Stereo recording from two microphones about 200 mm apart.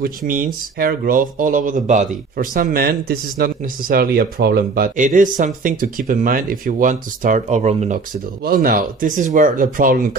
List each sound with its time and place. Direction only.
0.3 s speech: 45° right (ahead or behind)